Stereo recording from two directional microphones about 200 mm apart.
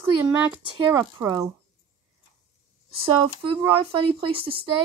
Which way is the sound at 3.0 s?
25° right (ahead or behind).